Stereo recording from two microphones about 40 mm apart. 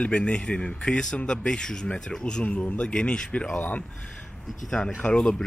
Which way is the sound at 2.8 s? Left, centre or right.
Left.